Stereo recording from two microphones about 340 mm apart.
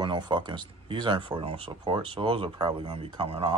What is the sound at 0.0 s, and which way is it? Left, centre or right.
Speech, centre.